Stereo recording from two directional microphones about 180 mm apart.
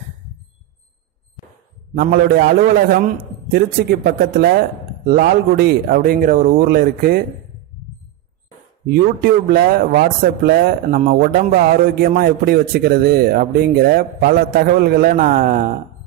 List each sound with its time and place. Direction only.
2.0 s speech: 60° right (ahead or behind)
8.9 s speech: 55° right (ahead or behind)